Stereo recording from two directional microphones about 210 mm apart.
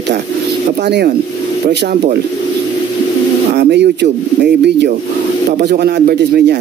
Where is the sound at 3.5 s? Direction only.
50° right (ahead or behind).